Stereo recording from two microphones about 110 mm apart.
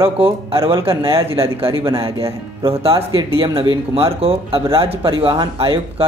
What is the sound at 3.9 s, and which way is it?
A man's voice, 65° right (ahead or behind).